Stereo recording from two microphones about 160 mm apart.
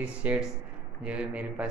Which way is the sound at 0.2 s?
10° right (ahead or behind).